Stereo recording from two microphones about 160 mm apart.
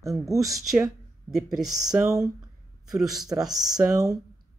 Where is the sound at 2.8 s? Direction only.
Centre (ahead or behind).